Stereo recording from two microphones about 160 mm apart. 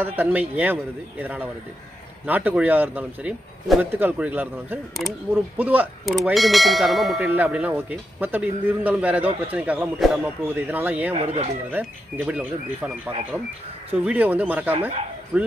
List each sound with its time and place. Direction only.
0.0 s a man's voice: 10° right (ahead or behind)
11.1 s speech: 40° right (ahead or behind)
11.7 s a man's voice: 10° right (ahead or behind)